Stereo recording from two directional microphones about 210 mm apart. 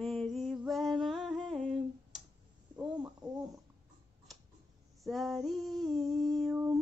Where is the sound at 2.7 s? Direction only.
10° right (ahead or behind).